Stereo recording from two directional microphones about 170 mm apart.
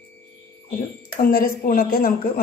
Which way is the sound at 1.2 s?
60° left (ahead or behind).